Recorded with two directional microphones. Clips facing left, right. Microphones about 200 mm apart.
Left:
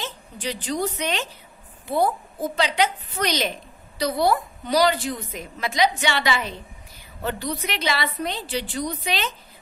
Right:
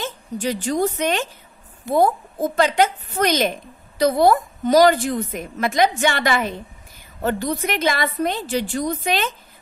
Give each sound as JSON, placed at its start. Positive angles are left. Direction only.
{"t": 0.0, "sound": "a woman's voice", "side_deg": -45}